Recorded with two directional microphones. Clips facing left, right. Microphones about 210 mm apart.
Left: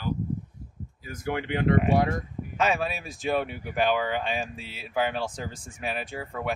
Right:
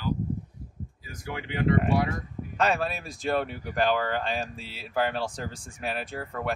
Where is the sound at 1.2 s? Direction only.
55° left (ahead or behind).